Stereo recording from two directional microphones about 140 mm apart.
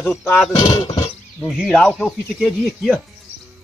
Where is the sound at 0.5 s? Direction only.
30° left (ahead or behind).